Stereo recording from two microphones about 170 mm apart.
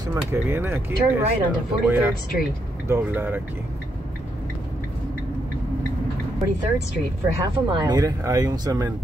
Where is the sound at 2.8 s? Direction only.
15° right (ahead or behind).